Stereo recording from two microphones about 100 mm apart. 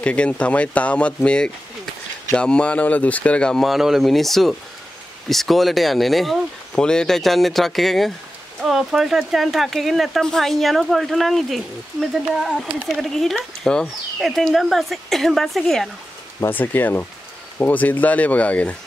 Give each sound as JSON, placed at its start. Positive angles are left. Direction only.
{"t": 0.0, "sound": "speech", "side_deg": 10}
{"t": 16.4, "sound": "speech", "side_deg": 20}